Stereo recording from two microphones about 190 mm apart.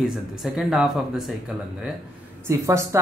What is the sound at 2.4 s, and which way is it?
Speech, 15° right (ahead or behind).